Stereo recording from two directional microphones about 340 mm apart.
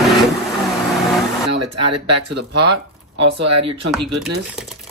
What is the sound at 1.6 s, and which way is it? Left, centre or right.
Speech, right.